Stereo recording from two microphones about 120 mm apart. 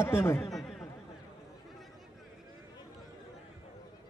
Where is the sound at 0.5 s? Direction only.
5° left (ahead or behind).